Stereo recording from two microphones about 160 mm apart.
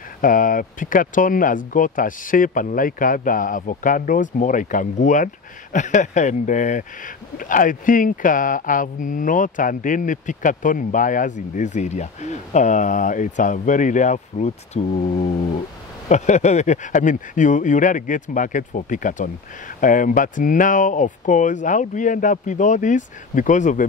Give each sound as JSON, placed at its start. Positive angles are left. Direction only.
{"t": 0.2, "sound": "speech", "side_deg": 55}